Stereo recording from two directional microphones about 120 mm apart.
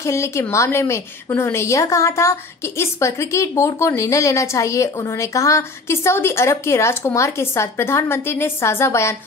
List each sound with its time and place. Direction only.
0.0 s a woman's voice: 25° left (ahead or behind)